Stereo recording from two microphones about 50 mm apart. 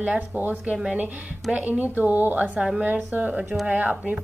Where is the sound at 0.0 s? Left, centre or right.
Right.